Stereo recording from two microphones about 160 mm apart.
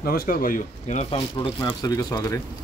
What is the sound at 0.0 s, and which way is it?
Speech, 65° left (ahead or behind).